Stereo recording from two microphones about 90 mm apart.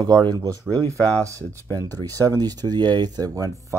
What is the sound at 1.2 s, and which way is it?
Speech, 35° right (ahead or behind).